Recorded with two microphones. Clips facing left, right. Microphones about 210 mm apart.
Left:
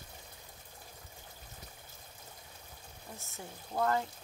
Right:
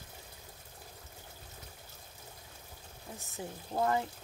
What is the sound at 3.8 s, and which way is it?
Speech, 15° right (ahead or behind).